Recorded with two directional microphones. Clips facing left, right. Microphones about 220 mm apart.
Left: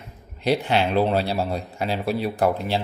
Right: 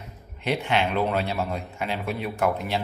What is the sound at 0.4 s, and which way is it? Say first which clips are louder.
Speech: left 4 dB; 35° left (ahead or behind).